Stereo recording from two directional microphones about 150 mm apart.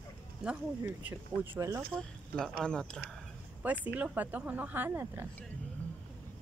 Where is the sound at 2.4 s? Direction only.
5° left (ahead or behind).